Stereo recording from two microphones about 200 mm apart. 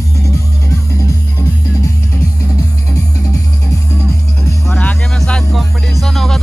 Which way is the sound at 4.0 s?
10° left (ahead or behind).